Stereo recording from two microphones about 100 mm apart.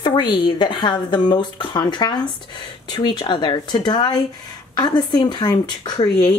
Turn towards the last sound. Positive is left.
turn(degrees=40)  # may be behind; listen again after turning